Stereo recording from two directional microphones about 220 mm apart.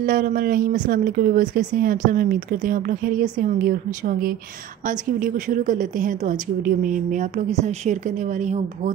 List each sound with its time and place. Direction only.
0.0 s a woman's voice: 40° right (ahead or behind)